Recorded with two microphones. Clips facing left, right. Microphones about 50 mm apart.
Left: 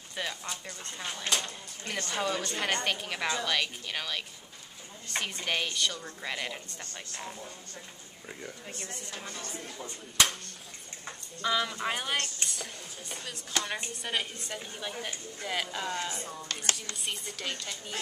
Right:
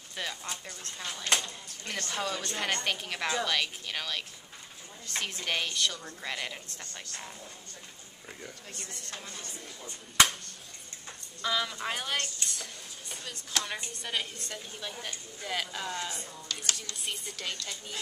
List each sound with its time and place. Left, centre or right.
0.1 s speech: centre
8.3 s speech: centre
11.4 s speech: centre
16.5 s speech: left
16.9 s speech: centre